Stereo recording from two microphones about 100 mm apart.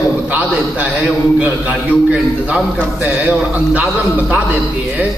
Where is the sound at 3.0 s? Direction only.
10° right (ahead or behind).